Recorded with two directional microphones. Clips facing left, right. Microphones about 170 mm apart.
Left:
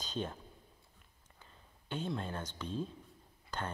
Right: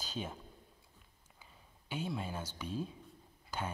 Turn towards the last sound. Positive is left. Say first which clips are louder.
# even
turn(degrees=-10)  # may be behind; listen again after turning